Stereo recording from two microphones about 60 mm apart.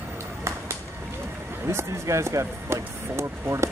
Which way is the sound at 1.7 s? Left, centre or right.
Right.